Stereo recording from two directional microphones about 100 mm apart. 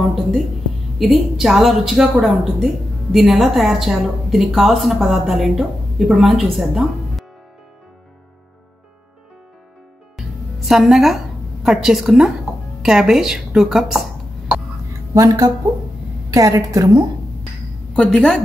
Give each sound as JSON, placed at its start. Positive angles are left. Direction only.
{"t": 0.0, "sound": "a woman's voice", "side_deg": 0}
{"t": 10.1, "sound": "music", "side_deg": 0}
{"t": 12.8, "sound": "speech", "side_deg": -5}
{"t": 15.1, "sound": "a woman's voice", "side_deg": -35}
{"t": 17.9, "sound": "a woman's voice", "side_deg": 5}